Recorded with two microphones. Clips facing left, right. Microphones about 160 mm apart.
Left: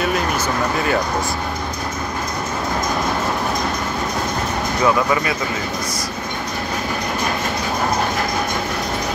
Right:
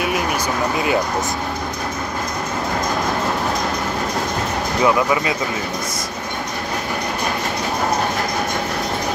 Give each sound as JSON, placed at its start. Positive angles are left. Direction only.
{"t": 4.8, "sound": "speech", "side_deg": -15}